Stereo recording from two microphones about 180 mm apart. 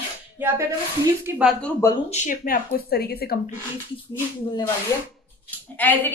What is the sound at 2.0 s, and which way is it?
Speech, 40° left (ahead or behind).